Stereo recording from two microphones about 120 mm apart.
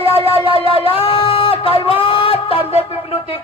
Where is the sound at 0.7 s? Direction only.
50° left (ahead or behind).